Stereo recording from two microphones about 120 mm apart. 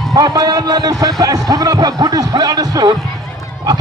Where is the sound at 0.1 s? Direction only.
30° right (ahead or behind).